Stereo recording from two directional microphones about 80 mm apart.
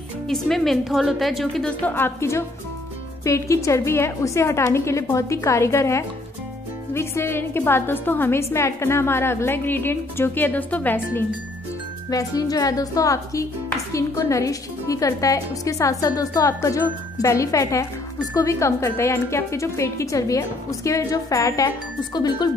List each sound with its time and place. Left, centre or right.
0.3 s a woman's voice: centre
1.7 s a woman's voice: left
12.1 s a woman's voice: left
22.1 s speech: left